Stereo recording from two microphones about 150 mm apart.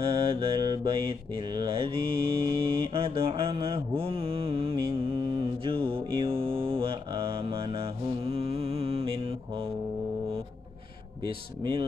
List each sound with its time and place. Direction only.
0.0 s mantra: 35° right (ahead or behind)
11.2 s a man's voice: 35° right (ahead or behind)